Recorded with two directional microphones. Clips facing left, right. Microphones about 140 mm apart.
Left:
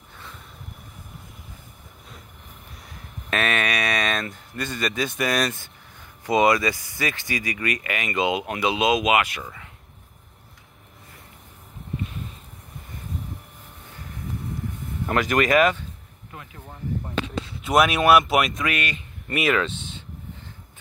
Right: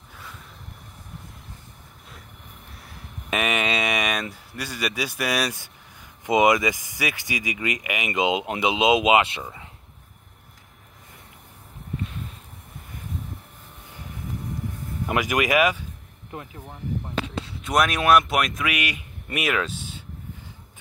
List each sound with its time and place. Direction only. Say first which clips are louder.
3.3 s speech: even; 15° right (ahead or behind)
15.0 s speech: left 2 dB; 15° right (ahead or behind)
17.6 s speech: left 2 dB; 5° left (ahead or behind)